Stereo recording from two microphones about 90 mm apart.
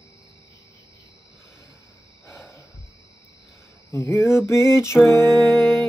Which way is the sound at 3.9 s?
35° left (ahead or behind).